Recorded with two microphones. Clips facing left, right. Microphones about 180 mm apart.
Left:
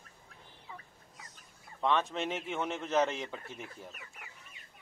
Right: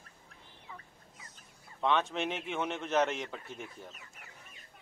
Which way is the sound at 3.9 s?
60° left (ahead or behind).